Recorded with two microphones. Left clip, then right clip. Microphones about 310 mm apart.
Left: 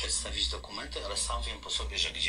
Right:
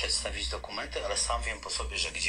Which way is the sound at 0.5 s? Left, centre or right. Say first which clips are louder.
Right 3 dB; right.